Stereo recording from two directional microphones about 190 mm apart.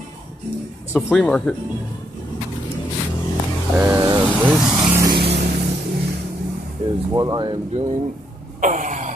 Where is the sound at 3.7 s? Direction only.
15° right (ahead or behind).